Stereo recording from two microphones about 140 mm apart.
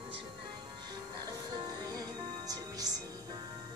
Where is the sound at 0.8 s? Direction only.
30° right (ahead or behind).